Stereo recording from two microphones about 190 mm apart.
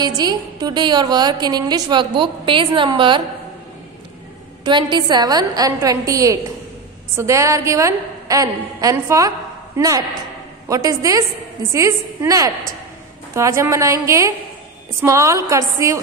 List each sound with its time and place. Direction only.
0.2 s a woman's voice: 20° right (ahead or behind)
4.6 s a woman's voice: 25° right (ahead or behind)